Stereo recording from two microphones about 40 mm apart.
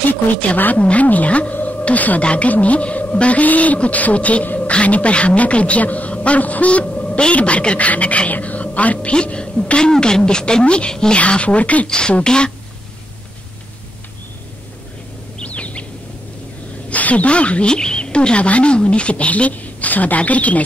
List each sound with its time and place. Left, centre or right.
0.6 s a woman's voice: left
1.5 s a sound: left
2.2 s a woman's voice: left
9.1 s speech: left
11.1 s speech: left
12.1 s speech: left
15.4 s bird: left
16.9 s a woman's voice: left